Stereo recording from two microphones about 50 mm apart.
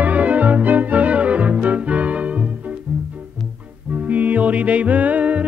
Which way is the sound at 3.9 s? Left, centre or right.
Right.